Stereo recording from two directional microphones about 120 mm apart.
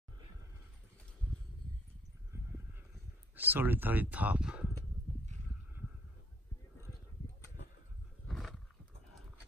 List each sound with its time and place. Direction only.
2.3 s horse: 20° right (ahead or behind)
3.3 s speech: 15° right (ahead or behind)
8.3 s roar: centre (ahead or behind)